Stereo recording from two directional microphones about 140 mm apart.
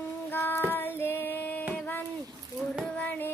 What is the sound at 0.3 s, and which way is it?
Child singing, 15° left (ahead or behind).